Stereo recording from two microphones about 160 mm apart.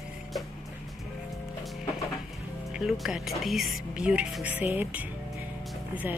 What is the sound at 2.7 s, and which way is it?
Speech, centre (ahead or behind).